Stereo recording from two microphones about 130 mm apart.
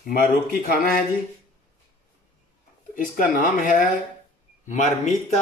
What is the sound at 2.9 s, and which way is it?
Speech, 90° left.